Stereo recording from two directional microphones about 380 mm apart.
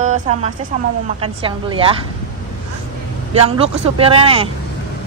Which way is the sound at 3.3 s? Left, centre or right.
Centre.